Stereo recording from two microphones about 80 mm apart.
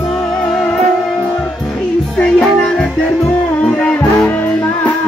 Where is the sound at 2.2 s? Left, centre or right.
Centre.